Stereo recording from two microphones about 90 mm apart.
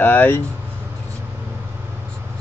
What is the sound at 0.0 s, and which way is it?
Speech, 20° left (ahead or behind).